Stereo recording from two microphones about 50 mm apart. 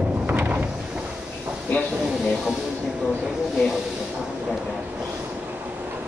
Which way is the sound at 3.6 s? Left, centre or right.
Centre.